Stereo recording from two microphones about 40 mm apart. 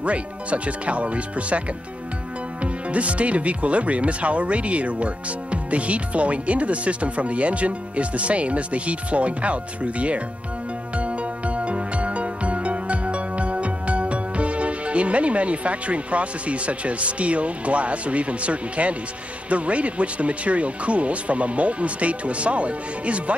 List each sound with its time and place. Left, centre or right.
0.0 s speech: right
2.6 s speech: right
11.0 s music: right
19.5 s speech: right